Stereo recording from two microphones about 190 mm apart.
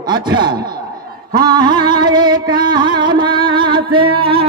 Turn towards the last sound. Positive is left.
turn(degrees=-30)  # may be behind; listen again after turning